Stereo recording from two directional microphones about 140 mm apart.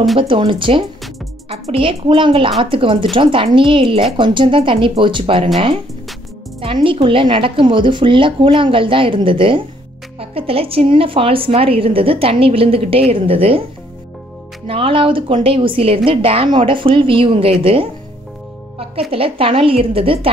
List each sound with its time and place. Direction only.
0.2 s a woman's voice: 35° right (ahead or behind)
6.6 s a woman's voice: 40° right (ahead or behind)
14.7 s a woman's voice: 40° right (ahead or behind)